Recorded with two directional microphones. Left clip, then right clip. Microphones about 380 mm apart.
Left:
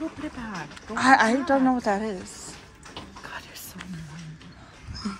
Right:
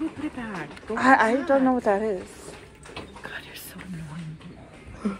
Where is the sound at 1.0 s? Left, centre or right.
Centre.